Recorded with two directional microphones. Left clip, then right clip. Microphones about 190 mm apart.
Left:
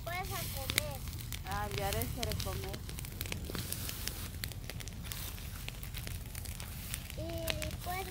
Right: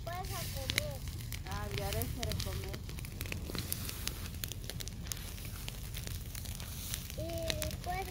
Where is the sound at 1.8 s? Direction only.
25° right (ahead or behind).